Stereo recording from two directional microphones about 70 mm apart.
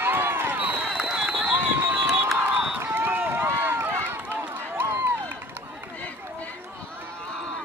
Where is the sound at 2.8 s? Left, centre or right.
Right.